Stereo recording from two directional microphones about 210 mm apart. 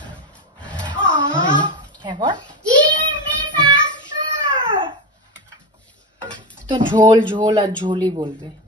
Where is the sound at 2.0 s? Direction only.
20° right (ahead or behind).